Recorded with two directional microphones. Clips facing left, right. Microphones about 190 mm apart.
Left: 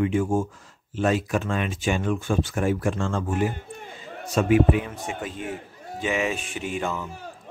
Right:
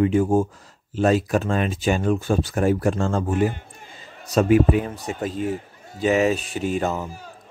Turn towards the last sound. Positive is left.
turn(degrees=-40)  # may be behind; listen again after turning